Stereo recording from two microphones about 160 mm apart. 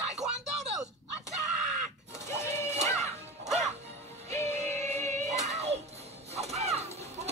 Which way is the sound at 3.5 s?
45° right (ahead or behind).